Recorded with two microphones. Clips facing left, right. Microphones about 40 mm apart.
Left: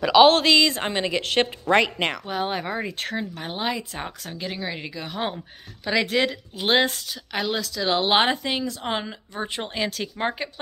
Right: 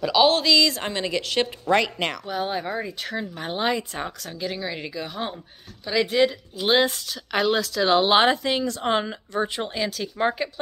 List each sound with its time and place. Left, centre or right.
0.0 s a woman's voice: left
0.5 s a woman's voice: left
2.2 s speech: left
3.3 s speech: centre
4.2 s a woman's voice: left
4.9 s speech: left
5.9 s a woman's voice: left
6.1 s speech: left
7.3 s speech: centre
8.1 s a woman's voice: left
8.8 s speech: centre
9.5 s a woman's voice: left